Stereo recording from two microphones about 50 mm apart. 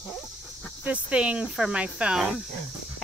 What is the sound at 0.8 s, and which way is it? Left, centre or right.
Speech, right.